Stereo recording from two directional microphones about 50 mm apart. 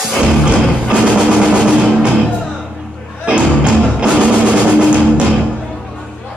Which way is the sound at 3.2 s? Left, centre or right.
Right.